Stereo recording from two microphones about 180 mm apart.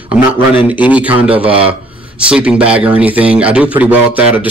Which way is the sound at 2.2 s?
5° right (ahead or behind).